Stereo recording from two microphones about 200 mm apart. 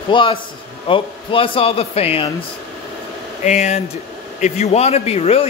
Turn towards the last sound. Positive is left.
turn(degrees=30)  # may be behind; listen again after turning